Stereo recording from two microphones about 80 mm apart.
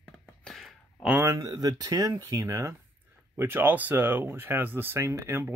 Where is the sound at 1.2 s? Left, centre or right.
Right.